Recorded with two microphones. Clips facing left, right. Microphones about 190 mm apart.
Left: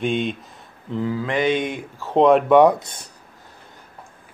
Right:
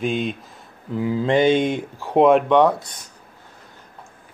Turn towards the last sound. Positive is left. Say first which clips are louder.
# left 3 dB
turn(degrees=25)  # may be behind; listen again after turning